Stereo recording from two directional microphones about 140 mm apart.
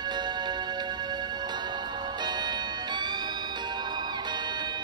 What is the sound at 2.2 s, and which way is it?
Music, 30° right (ahead or behind).